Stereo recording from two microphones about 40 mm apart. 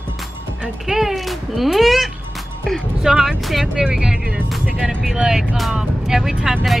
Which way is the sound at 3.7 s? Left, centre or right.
Centre.